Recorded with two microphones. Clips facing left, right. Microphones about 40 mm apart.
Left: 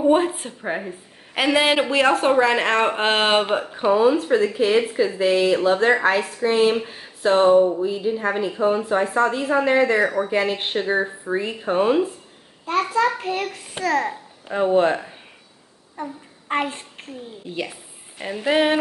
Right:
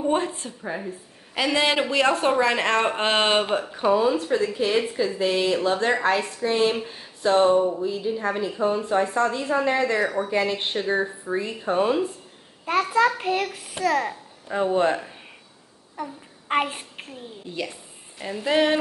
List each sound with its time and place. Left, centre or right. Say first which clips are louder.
0.0 s a woman's voice: left 6 dB; centre
0.3 s a woman's voice: left 4 dB; left
1.6 s speech: left 2 dB; centre
13.0 s a child's voice: even; right
13.8 s a child's voice: left 1 dB; centre
16.6 s a child's voice: left 2 dB; centre
18.5 s speech: left 2 dB; centre